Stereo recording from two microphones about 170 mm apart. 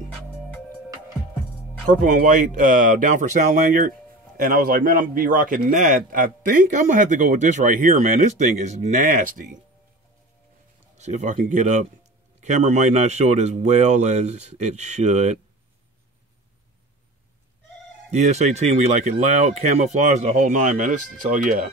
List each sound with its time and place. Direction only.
1.9 s a man's voice: 50° right (ahead or behind)
11.0 s a man's voice: 45° right (ahead or behind)
18.1 s a man's voice: 40° right (ahead or behind)